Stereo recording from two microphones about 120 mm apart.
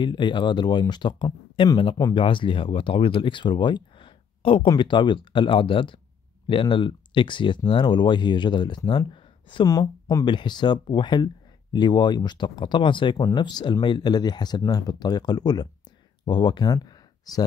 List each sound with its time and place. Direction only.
0.0 s speech: 40° left (ahead or behind)
9.7 s speech: 30° left (ahead or behind)